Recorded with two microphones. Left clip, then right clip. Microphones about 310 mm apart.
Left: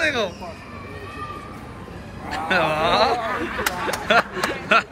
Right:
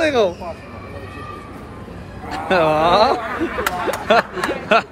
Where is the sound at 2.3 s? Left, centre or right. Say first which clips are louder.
Right 4 dB; centre.